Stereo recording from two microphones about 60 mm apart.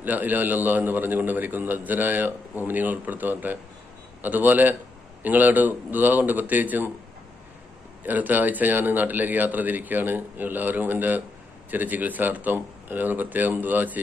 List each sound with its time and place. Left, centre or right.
0.0 s a man's voice: right
8.0 s a man's voice: right